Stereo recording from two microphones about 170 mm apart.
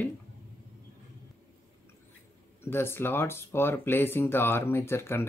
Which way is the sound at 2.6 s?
15° left (ahead or behind).